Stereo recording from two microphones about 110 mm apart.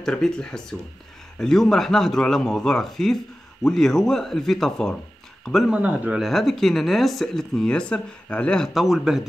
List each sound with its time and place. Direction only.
0.0 s speech: 5° left (ahead or behind)
5.7 s speech: 10° right (ahead or behind)
6.2 s speech: centre (ahead or behind)